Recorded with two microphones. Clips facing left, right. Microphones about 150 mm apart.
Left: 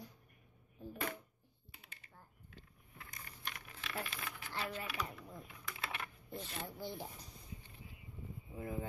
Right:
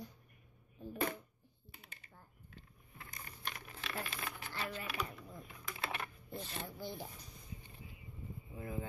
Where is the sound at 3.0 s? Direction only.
30° right (ahead or behind).